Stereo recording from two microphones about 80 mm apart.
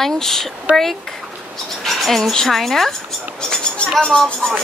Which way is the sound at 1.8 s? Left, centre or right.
Centre.